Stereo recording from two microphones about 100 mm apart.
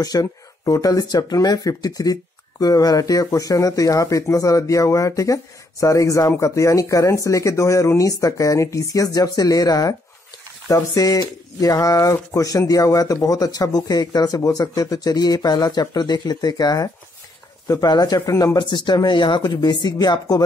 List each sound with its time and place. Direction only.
0.0 s speech: 35° left (ahead or behind)
18.6 s speech: 50° left (ahead or behind)